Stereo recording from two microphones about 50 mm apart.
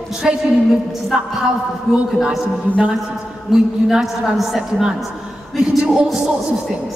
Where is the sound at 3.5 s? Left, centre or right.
Centre.